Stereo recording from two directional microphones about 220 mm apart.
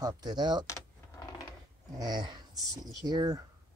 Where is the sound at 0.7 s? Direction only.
15° left (ahead or behind).